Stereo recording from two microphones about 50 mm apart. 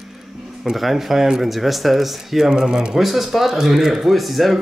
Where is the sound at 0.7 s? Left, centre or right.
Centre.